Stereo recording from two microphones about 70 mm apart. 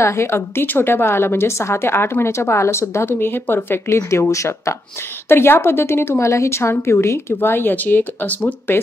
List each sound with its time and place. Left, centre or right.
0.0 s a woman's voice: left
5.3 s a woman's voice: left